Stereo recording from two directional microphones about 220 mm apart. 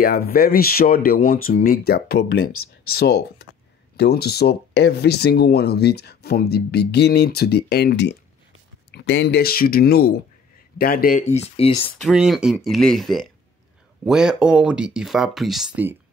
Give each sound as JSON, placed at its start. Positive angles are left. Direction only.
{"t": 0.0, "sound": "speech", "side_deg": 40}
{"t": 12.0, "sound": "speech", "side_deg": 0}